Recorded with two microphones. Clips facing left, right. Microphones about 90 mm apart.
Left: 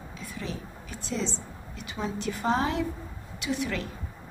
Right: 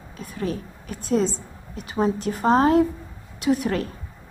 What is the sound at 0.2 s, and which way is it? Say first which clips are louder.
A woman's voice: right 9 dB; 50° right (ahead or behind).